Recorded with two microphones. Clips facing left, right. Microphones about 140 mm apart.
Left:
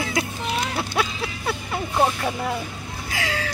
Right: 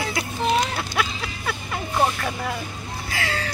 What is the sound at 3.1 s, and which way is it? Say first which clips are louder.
Speech: left 1 dB; 10° left (ahead or behind).